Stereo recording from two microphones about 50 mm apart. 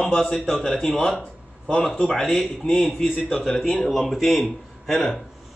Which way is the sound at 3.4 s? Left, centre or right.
Centre.